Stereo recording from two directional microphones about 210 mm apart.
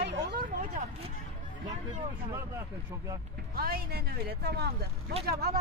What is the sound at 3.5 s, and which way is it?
Speech, 45° right (ahead or behind).